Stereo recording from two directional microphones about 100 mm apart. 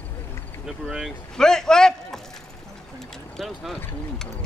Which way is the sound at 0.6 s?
5° right (ahead or behind).